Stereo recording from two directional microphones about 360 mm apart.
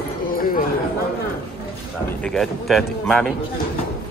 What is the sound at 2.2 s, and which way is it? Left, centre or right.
A man's voice, centre.